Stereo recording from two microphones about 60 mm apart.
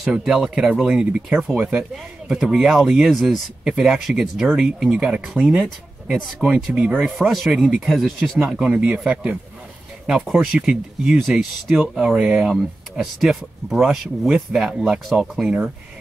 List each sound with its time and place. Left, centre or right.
0.0 s speech: centre
6.4 s speech: centre
8.5 s speech: centre
13.0 s speech: centre